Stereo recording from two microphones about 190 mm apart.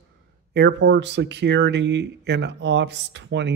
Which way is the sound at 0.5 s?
65° right (ahead or behind).